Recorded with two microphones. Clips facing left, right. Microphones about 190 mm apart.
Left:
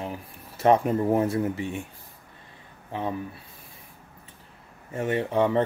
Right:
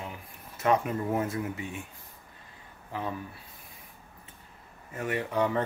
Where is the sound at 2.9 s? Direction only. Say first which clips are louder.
Left 4 dB; 20° left (ahead or behind).